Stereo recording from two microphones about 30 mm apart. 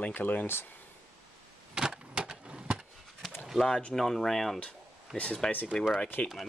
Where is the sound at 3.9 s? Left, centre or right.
Centre.